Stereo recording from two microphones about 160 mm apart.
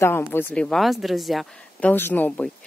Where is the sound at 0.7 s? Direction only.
Centre (ahead or behind).